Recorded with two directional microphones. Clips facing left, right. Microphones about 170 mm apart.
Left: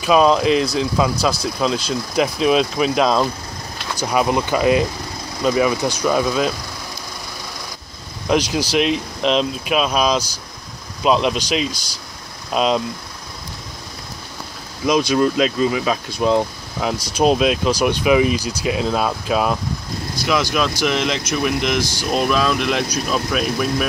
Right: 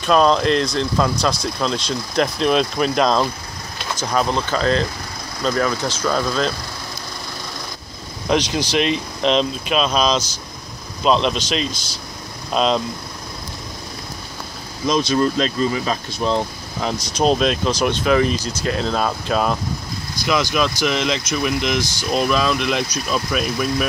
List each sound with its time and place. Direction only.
0.0 s speech: 5° left (ahead or behind)
8.3 s speech: 5° left (ahead or behind)
14.9 s speech: 10° left (ahead or behind)
20.8 s speech: centre (ahead or behind)